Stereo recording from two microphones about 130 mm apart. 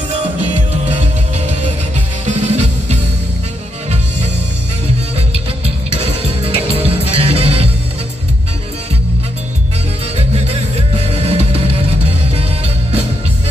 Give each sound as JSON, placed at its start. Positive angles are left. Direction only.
{"t": 2.2, "sound": "music", "side_deg": -55}
{"t": 5.9, "sound": "music", "side_deg": -50}
{"t": 10.1, "sound": "music", "side_deg": -50}